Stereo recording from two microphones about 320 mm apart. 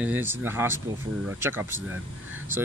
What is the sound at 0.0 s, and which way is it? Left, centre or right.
Speech, centre.